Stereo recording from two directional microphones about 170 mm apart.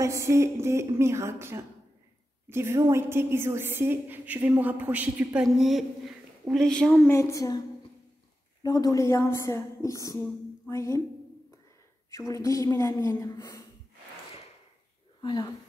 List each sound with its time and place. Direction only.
0.0 s a woman's voice: 15° right (ahead or behind); by 7.1 s 5° left (ahead or behind)
7.1 s a woman's voice: 15° left (ahead or behind)
8.6 s a woman's voice: 20° left (ahead or behind)
12.1 s a woman's voice: 20° left (ahead or behind)
15.2 s a woman's voice: 25° left (ahead or behind)